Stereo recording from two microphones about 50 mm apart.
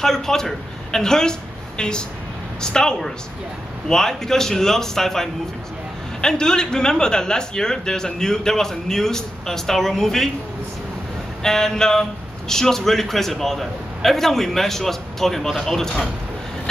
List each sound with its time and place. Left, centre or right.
0.0 s a man's voice: centre
11.4 s a man's voice: centre